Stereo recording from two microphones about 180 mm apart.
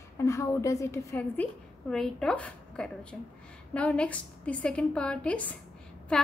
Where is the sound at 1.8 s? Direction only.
5° left (ahead or behind).